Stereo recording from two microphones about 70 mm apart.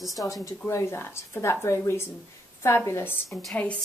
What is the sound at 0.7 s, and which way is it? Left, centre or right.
A woman's voice, left.